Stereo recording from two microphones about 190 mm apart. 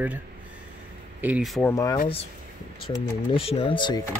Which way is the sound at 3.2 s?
30° left (ahead or behind).